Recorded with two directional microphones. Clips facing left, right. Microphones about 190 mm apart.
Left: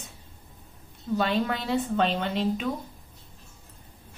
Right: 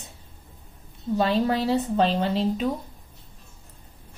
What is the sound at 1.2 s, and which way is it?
A woman's voice, 35° right (ahead or behind).